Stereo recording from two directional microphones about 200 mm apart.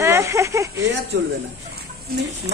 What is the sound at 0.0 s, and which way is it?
Speech, 15° right (ahead or behind).